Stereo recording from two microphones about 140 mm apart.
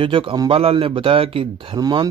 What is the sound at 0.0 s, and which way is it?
A man's voice, 40° right (ahead or behind).